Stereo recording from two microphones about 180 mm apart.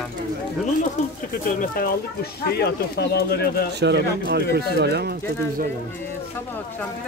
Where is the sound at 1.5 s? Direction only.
50° left (ahead or behind).